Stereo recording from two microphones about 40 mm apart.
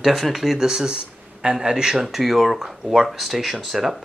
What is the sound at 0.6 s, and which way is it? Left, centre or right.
Speech, centre.